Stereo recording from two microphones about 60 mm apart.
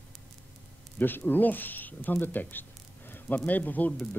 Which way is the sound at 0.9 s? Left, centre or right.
Left.